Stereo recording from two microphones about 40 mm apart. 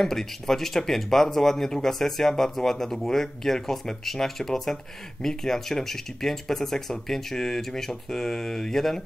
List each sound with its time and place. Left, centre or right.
0.0 s speech: centre